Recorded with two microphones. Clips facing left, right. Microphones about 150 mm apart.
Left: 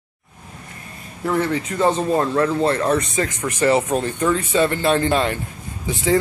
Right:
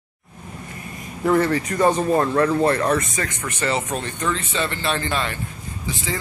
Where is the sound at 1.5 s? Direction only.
15° left (ahead or behind).